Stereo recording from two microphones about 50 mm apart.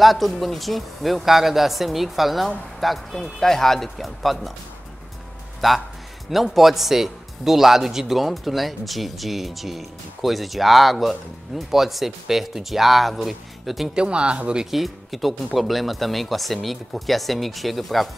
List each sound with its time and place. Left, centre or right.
0.0 s speech: centre
5.6 s speech: centre
13.9 s speech: centre
14.7 s speech: centre